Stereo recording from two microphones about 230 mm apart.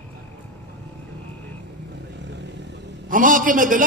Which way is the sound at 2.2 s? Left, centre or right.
Right.